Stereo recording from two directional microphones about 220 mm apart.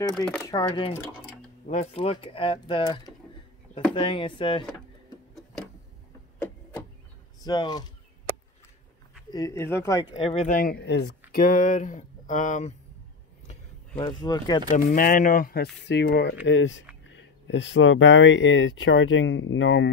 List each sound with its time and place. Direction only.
0.1 s speech: centre (ahead or behind)
0.4 s speech: 15° left (ahead or behind)
1.7 s speech: 30° left (ahead or behind)
5.3 s vehicle: 5° left (ahead or behind)
7.4 s speech: 20° left (ahead or behind)
9.3 s speech: 15° left (ahead or behind)
10.5 s speech: 40° left (ahead or behind)
13.5 s a sound: 20° left (ahead or behind)
14.7 s speech: 40° left (ahead or behind); by 19.9 s 55° left (ahead or behind)